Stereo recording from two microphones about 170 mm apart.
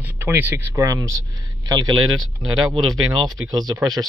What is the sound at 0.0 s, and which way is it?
Speech, 10° right (ahead or behind).